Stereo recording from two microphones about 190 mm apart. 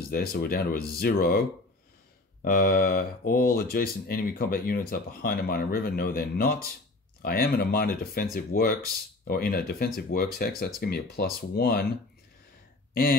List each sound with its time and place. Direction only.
0.1 s speech: 55° left (ahead or behind)
2.4 s speech: 50° left (ahead or behind)